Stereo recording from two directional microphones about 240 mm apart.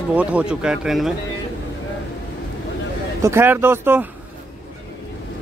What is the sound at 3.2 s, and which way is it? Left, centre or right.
Speech, centre.